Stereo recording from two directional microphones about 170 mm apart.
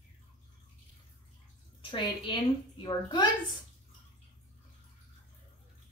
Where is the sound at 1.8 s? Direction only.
30° left (ahead or behind).